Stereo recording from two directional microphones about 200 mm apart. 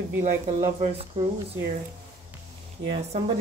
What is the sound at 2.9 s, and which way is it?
Speech, 30° right (ahead or behind).